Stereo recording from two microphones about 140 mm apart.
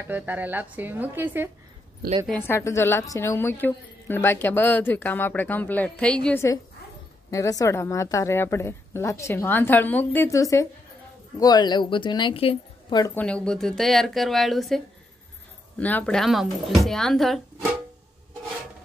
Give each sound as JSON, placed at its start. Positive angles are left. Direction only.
{"t": 0.0, "sound": "speech", "side_deg": -10}
{"t": 2.3, "sound": "a woman's voice", "side_deg": 15}
{"t": 7.2, "sound": "a woman's voice", "side_deg": 25}
{"t": 13.1, "sound": "speech", "side_deg": 10}
{"t": 15.8, "sound": "speech", "side_deg": 10}